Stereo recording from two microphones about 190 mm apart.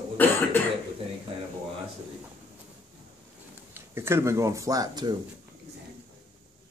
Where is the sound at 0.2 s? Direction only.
10° left (ahead or behind).